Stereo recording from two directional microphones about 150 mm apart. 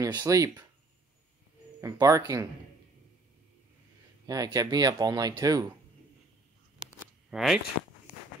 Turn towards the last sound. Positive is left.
turn(degrees=-5)  # may be behind; listen again after turning